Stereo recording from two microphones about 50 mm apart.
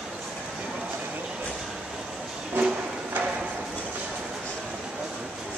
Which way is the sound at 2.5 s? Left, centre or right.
Right.